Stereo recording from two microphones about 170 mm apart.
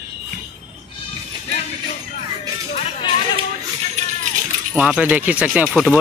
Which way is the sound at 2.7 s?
40° left (ahead or behind).